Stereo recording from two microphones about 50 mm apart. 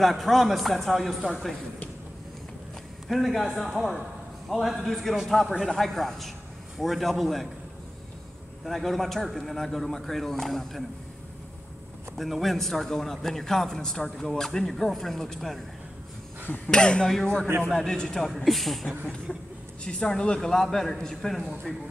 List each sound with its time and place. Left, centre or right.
0.0 s speech: centre
3.1 s speech: centre
8.6 s speech: centre
12.2 s a man's voice: centre
16.4 s speech: left
16.7 s a man's voice: centre
19.3 s a man's voice: centre